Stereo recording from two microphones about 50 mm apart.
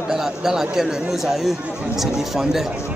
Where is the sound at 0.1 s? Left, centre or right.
Centre.